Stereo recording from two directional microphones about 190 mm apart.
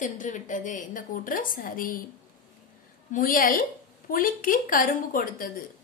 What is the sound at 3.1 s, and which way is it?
A woman's voice, 45° left (ahead or behind).